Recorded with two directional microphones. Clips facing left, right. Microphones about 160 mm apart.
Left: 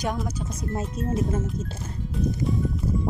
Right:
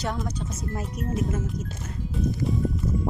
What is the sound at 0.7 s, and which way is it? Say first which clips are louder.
Speech: left 2 dB; 30° left (ahead or behind).